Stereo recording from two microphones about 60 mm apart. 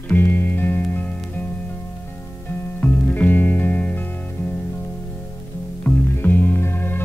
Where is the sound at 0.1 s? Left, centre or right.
Left.